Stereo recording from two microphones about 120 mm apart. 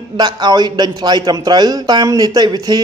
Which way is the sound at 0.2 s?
35° right (ahead or behind).